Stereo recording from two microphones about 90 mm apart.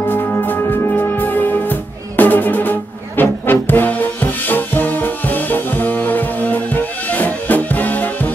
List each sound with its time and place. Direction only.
0.1 s music: 20° left (ahead or behind)